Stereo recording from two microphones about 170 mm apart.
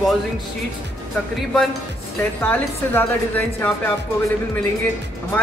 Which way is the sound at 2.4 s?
10° left (ahead or behind).